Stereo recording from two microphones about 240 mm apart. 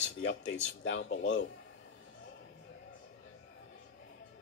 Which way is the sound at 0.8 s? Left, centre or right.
Left.